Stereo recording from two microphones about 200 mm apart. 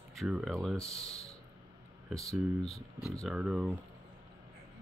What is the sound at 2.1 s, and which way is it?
Speech, centre (ahead or behind).